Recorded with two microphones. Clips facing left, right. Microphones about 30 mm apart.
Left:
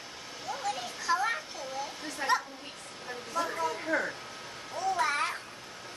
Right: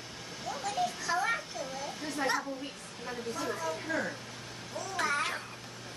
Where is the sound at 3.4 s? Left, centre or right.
Left.